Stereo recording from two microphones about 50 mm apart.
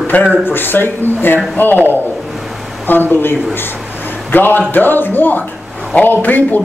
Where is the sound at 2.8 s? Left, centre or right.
Left.